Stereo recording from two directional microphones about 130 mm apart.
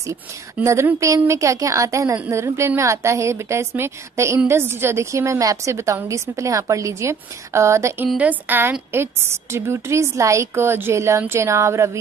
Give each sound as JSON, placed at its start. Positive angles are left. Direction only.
{"t": 0.0, "sound": "a woman's voice", "side_deg": -20}